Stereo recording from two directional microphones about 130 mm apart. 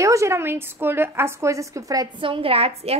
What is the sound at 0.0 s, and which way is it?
A woman's voice, 25° right (ahead or behind).